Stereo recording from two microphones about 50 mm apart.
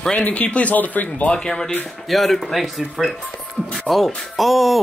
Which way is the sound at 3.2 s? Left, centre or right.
Centre.